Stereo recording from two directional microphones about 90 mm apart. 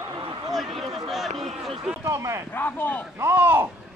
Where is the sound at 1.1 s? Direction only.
Centre (ahead or behind).